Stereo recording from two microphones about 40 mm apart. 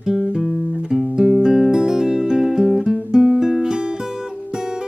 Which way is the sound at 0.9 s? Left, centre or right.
Right.